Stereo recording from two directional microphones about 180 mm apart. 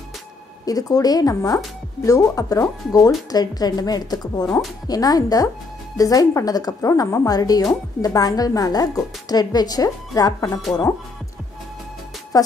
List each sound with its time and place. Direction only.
0.7 s a woman's voice: 20° left (ahead or behind)
12.3 s speech: 20° left (ahead or behind)